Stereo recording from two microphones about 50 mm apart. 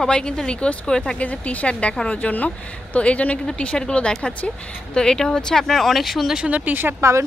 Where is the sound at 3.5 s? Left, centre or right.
Centre.